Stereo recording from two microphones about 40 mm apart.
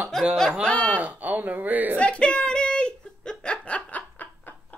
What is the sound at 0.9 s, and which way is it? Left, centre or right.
Speech, right.